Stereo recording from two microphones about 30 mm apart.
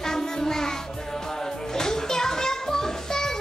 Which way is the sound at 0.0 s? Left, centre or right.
Centre.